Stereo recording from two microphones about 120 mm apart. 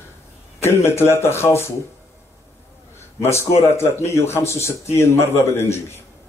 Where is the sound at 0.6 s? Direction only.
20° left (ahead or behind).